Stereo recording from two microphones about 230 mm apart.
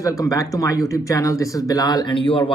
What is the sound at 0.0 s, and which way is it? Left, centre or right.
Speech, centre.